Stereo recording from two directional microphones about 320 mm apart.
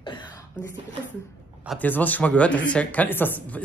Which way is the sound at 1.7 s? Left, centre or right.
Centre.